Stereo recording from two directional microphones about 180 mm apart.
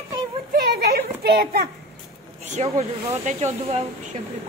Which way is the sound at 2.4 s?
40° right (ahead or behind).